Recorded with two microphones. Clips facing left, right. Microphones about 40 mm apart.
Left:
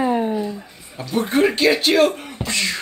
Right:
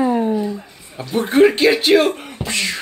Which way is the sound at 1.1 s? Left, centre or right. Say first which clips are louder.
Right 5 dB; centre.